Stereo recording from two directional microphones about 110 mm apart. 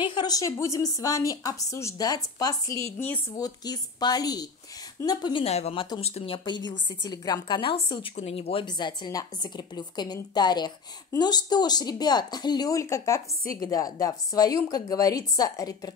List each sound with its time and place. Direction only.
0.0 s speech: 45° left (ahead or behind)
5.4 s speech: 70° left (ahead or behind)
6.3 s speech: 45° left (ahead or behind)
8.2 s speech: 60° left (ahead or behind)
8.6 s speech: 40° left (ahead or behind)